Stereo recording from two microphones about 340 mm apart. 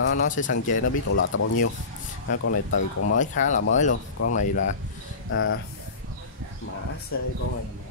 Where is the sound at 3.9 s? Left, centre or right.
Left.